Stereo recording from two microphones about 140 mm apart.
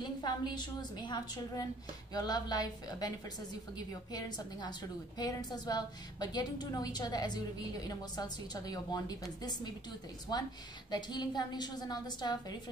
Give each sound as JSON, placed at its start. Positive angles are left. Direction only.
{"t": 0.2, "sound": "a woman's voice", "side_deg": 30}